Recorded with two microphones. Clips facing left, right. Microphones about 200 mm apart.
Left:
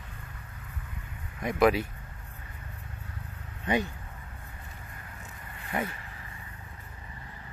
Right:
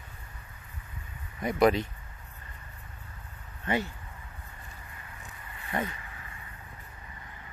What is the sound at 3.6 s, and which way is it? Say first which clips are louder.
Speech: left 2 dB; 15° left (ahead or behind).